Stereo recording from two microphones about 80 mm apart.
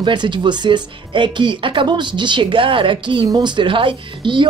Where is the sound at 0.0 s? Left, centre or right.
Right.